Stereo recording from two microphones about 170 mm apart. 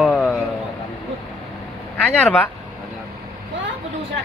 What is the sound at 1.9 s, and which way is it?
Speech, 5° left (ahead or behind).